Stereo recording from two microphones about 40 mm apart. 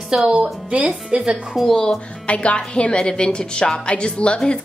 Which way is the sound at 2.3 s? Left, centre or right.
Left.